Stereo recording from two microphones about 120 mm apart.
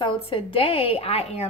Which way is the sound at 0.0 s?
45° left (ahead or behind).